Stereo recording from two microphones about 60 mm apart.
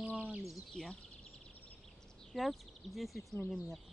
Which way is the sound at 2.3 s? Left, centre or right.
Centre.